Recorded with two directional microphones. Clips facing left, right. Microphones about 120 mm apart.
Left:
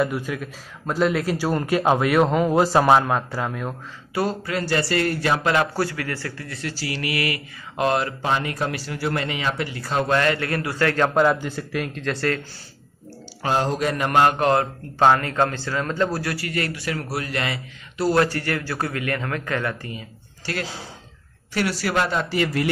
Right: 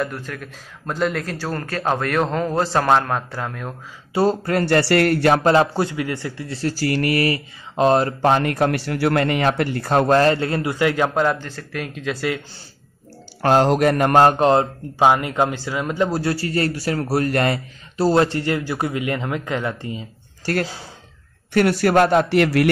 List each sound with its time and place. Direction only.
0.0 s a man's voice: 5° left (ahead or behind)
4.1 s speech: 30° right (ahead or behind)
4.5 s a man's voice: 55° right (ahead or behind)
5.4 s speech: 30° right (ahead or behind)
5.8 s a man's voice: 20° right (ahead or behind)
6.6 s speech: 50° right (ahead or behind); by 8.1 s 30° right (ahead or behind)
8.2 s a man's voice: 55° right (ahead or behind)
10.1 s a man's voice: 35° right (ahead or behind); by 11.1 s 15° right (ahead or behind)
11.4 s a man's voice: 5° left (ahead or behind)
13.4 s a man's voice: 65° right (ahead or behind)
14.2 s a man's voice: 25° right (ahead or behind)
15.0 s a man's voice: 15° right (ahead or behind); by 17.6 s 45° right (ahead or behind)
17.9 s a man's voice: 25° right (ahead or behind)
21.5 s speech: 50° right (ahead or behind)